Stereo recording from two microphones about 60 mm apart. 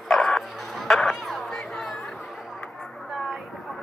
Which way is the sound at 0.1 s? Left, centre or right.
Centre.